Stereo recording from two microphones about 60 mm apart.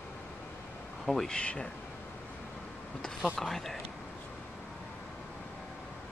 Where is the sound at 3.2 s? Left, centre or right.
Centre.